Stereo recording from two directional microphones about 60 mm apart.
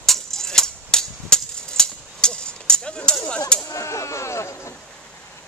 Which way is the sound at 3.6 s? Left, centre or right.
Left.